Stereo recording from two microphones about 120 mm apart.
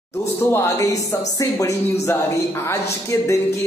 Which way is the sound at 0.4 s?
20° left (ahead or behind).